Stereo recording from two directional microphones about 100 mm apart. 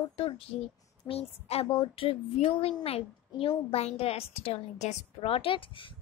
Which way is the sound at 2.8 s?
75° left (ahead or behind).